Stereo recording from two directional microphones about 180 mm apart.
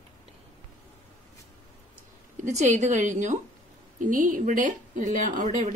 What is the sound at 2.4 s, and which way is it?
Speech, 40° right (ahead or behind).